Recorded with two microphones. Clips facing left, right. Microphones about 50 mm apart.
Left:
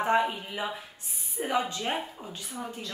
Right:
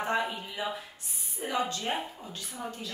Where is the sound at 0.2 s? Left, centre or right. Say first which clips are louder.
Left 3 dB; centre.